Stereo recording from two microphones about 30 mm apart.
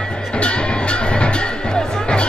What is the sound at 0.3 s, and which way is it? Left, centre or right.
Music, left.